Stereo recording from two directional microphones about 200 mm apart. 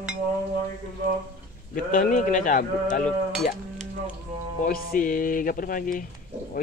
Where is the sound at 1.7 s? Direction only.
45° left (ahead or behind).